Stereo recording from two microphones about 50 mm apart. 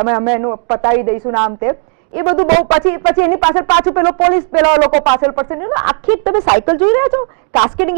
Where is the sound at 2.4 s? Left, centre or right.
Centre.